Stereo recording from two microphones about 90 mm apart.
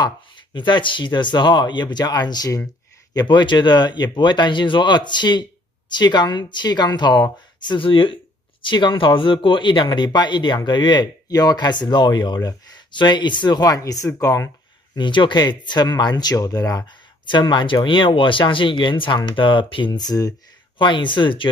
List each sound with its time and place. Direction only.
0.0 s speech: 55° left (ahead or behind)
3.2 s speech: 60° left (ahead or behind); by 8.2 s 85° left
8.6 s speech: 60° left (ahead or behind)
12.4 s a sound: 45° left (ahead or behind)
12.9 s speech: 55° left (ahead or behind); by 14.5 s 35° left (ahead or behind)
15.0 s speech: 60° left (ahead or behind); by 16.8 s 40° left (ahead or behind)
17.3 s speech: 55° left (ahead or behind)
19.9 s speech: 45° left (ahead or behind)
20.7 s speech: 60° left (ahead or behind)